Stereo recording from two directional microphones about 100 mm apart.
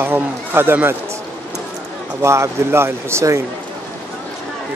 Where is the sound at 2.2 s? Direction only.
25° right (ahead or behind).